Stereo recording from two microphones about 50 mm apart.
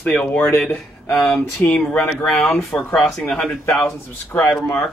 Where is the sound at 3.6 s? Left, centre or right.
Left.